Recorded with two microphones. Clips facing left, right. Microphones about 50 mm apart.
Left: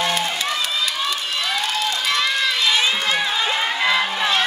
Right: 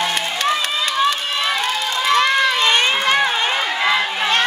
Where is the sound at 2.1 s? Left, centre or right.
Right.